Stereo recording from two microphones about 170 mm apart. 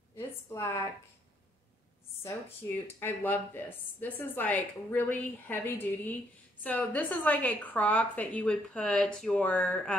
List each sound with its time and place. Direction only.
0.1 s a woman's voice: 15° left (ahead or behind)
2.2 s speech: 15° left (ahead or behind)